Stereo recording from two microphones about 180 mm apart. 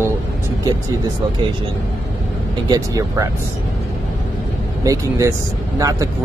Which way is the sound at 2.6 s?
20° right (ahead or behind).